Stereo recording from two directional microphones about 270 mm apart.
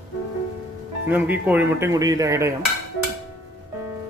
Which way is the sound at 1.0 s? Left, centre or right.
Centre.